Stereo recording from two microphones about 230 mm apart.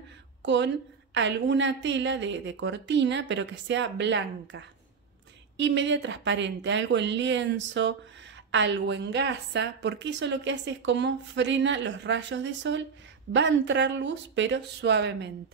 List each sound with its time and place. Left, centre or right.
0.4 s a woman's voice: right